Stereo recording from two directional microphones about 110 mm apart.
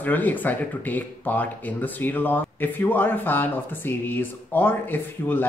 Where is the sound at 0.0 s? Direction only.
15° left (ahead or behind).